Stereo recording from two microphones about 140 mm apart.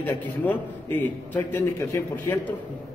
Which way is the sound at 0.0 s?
15° left (ahead or behind).